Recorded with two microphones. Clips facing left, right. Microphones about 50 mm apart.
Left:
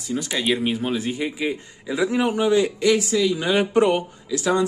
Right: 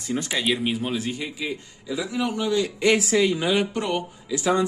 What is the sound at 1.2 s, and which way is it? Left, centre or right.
A man's voice, left.